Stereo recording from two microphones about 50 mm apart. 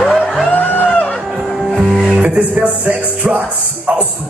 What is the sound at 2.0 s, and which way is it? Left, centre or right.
Music, right.